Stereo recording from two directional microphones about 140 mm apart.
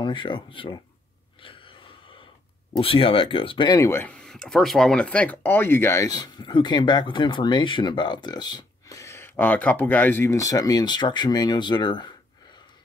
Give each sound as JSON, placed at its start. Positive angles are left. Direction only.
{"t": 0.0, "sound": "speech", "side_deg": 35}
{"t": 1.4, "sound": "gasp", "side_deg": 40}
{"t": 2.8, "sound": "speech", "side_deg": 40}
{"t": 3.8, "sound": "speech", "side_deg": 15}